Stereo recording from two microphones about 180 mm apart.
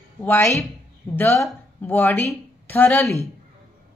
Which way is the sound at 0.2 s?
15° left (ahead or behind).